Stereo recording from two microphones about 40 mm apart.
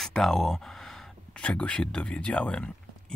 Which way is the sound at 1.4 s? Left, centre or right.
Left.